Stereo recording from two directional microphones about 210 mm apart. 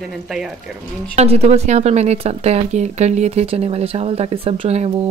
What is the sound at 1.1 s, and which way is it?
Speech, 30° right (ahead or behind).